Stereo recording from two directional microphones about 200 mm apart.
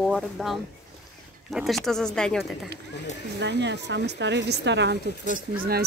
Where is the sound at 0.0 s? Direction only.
Centre (ahead or behind).